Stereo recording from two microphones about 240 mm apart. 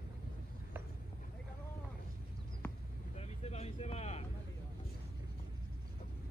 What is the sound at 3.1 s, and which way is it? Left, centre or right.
Vehicle, left.